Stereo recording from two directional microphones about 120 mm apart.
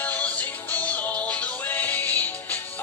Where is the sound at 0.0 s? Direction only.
10° left (ahead or behind).